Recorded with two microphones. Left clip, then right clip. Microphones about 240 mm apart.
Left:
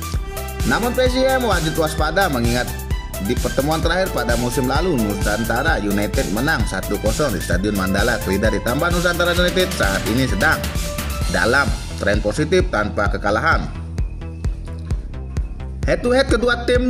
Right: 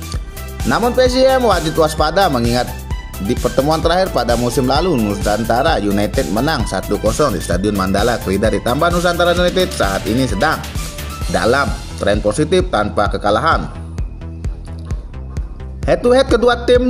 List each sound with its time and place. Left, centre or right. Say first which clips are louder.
0.7 s speech: right 5 dB; centre
3.4 s speech: right 6 dB; centre
12.0 s speech: right 4 dB; centre
15.8 s speech: right 5 dB; centre